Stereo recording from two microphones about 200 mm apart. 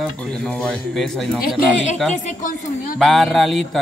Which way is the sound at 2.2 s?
40° left (ahead or behind).